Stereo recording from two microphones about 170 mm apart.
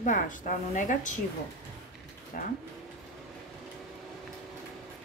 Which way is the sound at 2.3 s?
55° left (ahead or behind).